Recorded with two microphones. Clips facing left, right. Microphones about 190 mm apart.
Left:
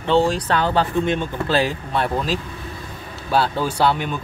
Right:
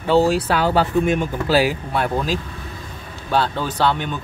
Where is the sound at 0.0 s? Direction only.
5° right (ahead or behind).